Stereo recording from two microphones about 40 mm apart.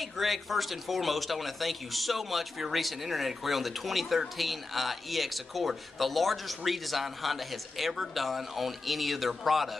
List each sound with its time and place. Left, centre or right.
0.0 s speech: centre